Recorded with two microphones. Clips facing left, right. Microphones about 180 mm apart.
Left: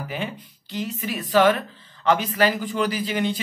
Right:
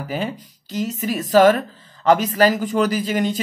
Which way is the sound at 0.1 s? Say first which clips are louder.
Right 5 dB; 40° right (ahead or behind).